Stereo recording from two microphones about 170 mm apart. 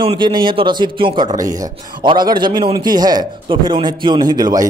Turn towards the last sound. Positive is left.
turn(degrees=-20)  # may be behind; listen again after turning